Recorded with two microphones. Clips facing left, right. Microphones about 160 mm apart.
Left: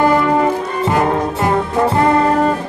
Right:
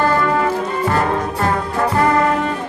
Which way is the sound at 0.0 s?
15° left (ahead or behind).